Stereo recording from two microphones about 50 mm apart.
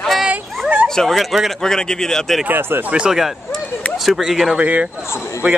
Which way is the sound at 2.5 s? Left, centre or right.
Right.